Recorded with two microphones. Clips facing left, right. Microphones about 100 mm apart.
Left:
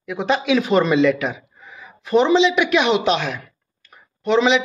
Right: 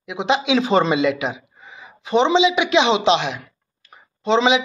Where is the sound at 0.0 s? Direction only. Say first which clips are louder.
Even; 20° right (ahead or behind).